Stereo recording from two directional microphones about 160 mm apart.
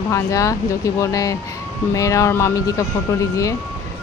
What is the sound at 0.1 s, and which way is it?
Speech, 20° left (ahead or behind).